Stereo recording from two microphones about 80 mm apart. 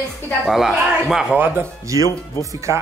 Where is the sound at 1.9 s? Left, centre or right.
Right.